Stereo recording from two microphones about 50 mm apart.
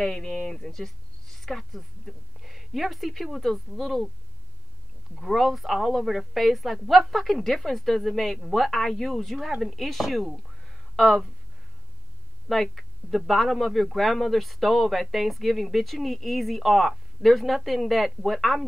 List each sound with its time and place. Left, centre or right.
0.0 s speech: centre
5.1 s a man's voice: centre
12.4 s a man's voice: centre